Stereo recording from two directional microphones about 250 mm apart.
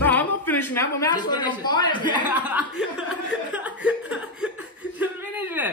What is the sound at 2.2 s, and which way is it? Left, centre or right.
Speech, centre.